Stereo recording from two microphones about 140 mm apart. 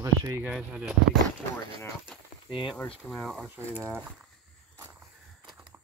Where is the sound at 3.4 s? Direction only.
15° right (ahead or behind).